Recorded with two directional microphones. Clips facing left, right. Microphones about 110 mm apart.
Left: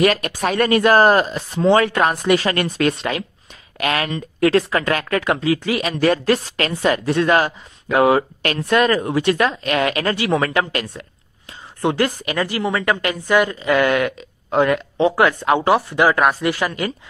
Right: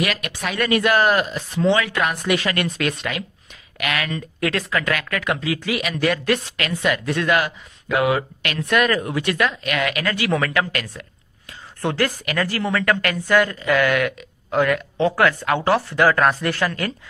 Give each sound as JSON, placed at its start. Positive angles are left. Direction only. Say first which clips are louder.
{"t": 0.0, "sound": "a woman's voice", "louder": "left 7 dB", "side_deg": 40}